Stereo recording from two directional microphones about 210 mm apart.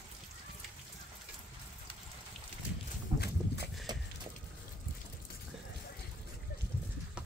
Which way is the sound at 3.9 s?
20° right (ahead or behind).